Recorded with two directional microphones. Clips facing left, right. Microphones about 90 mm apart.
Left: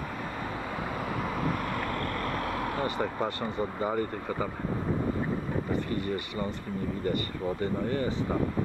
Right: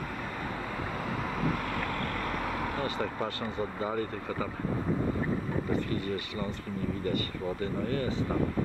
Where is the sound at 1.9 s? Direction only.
40° left (ahead or behind).